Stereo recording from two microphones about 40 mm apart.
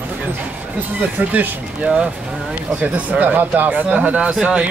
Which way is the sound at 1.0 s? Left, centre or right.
Right.